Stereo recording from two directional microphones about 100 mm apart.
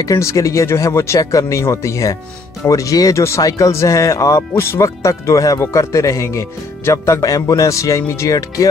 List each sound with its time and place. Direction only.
0.0 s speech: 35° left (ahead or behind)